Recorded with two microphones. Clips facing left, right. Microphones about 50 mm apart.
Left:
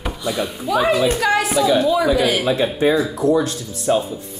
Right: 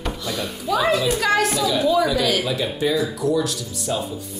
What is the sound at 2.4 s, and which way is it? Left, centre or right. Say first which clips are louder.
Speech: left 5 dB; left.